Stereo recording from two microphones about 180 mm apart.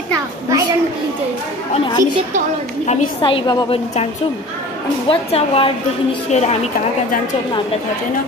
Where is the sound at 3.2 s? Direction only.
25° left (ahead or behind).